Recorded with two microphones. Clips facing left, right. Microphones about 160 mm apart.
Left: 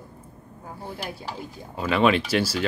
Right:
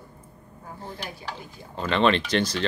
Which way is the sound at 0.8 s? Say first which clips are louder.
Left 3 dB; 10° left (ahead or behind).